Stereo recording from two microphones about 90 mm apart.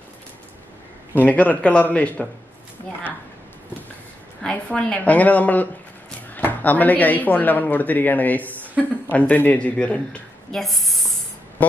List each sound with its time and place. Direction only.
1.1 s a woman's voice: 15° left (ahead or behind)
4.4 s a woman's voice: 10° left (ahead or behind)
10.6 s a sound: centre (ahead or behind)